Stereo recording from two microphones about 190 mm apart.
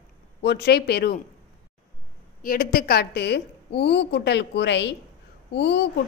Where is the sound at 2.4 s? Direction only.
50° left (ahead or behind).